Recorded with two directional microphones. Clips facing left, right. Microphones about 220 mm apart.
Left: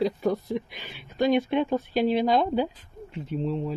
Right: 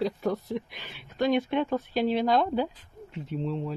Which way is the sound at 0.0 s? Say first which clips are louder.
Left 3 dB; 10° left (ahead or behind).